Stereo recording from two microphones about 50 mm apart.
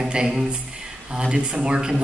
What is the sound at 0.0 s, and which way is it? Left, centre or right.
Speech, centre.